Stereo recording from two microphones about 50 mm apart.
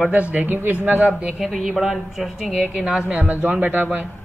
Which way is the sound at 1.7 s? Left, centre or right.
Centre.